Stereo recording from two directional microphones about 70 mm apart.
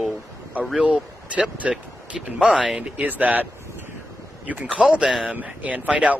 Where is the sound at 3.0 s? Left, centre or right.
Right.